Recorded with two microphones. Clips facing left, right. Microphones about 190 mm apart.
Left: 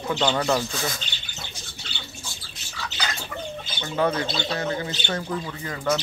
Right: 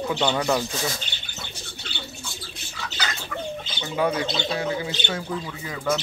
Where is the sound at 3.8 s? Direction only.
10° right (ahead or behind).